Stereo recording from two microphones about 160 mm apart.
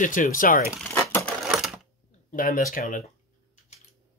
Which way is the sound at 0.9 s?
15° left (ahead or behind).